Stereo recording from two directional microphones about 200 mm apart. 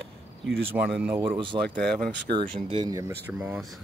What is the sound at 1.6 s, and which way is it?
Speech, 5° left (ahead or behind).